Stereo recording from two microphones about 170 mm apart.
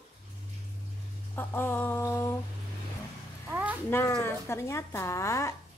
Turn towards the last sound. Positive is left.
turn(degrees=15)  # may be behind; listen again after turning